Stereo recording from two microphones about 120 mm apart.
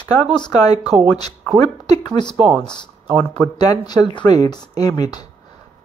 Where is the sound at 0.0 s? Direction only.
35° left (ahead or behind).